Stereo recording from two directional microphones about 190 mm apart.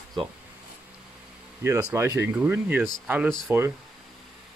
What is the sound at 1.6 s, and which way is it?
Speech, 10° right (ahead or behind).